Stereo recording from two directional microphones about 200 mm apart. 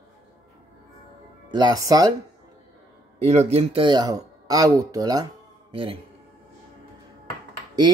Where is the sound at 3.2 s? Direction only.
30° right (ahead or behind).